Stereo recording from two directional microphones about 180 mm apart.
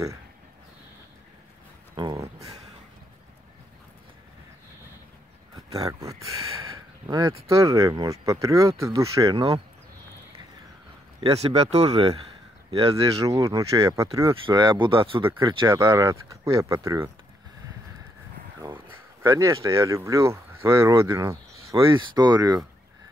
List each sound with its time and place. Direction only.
2.0 s a sound: 25° right (ahead or behind)
5.9 s speech: 20° right (ahead or behind)
11.1 s speech: 35° right (ahead or behind)
13.0 s speech: 20° right (ahead or behind)
15.7 s speech: 15° right (ahead or behind)
19.2 s speech: 15° right (ahead or behind)